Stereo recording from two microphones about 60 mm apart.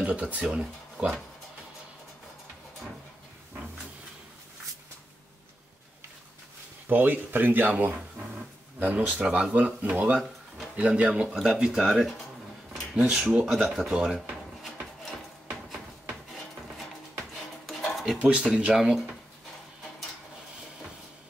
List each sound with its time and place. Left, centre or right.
0.0 s speech: right
0.4 s speech: centre
6.9 s speech: right
8.7 s speech: right; by 14.2 s centre
17.6 s a sound: centre
18.2 s speech: centre